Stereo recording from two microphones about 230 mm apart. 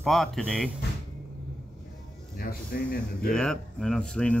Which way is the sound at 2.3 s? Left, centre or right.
Left.